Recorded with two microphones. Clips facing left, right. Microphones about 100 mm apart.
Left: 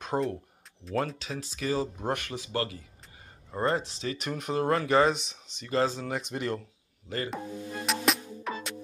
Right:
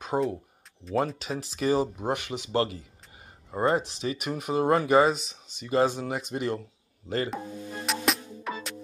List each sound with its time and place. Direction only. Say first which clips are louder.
0.0 s speech: right 2 dB; 5° right (ahead or behind)
1.0 s speech: right 4 dB; 15° right (ahead or behind)
2.0 s speech: right 2 dB; 10° right (ahead or behind); by 2.8 s 25° right (ahead or behind)
3.5 s speech: right 3 dB; 15° right (ahead or behind)
5.1 s speech: right 2 dB; centre (ahead or behind)
5.6 s speech: right 3 dB; 15° right (ahead or behind)
7.2 s music: right 1 dB; centre (ahead or behind)